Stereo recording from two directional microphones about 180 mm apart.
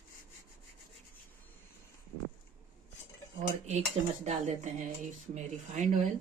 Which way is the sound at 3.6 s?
40° right (ahead or behind).